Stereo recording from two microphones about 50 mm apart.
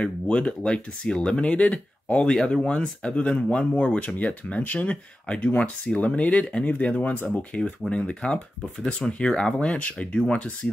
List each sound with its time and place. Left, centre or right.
0.0 s speech: left